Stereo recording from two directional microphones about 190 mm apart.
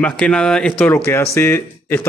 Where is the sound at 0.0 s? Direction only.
5° left (ahead or behind).